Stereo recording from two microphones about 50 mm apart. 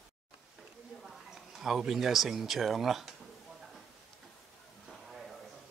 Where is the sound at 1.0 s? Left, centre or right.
Centre.